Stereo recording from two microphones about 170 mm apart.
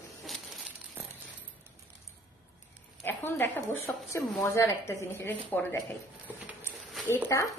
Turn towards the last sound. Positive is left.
turn(degrees=15)  # may be behind; listen again after turning